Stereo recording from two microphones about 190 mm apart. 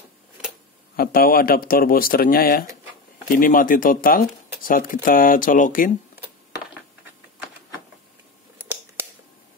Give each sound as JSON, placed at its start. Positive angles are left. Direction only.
{"t": 0.9, "sound": "speech", "side_deg": 50}